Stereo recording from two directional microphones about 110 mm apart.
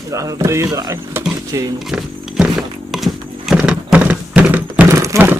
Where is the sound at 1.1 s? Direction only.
30° right (ahead or behind).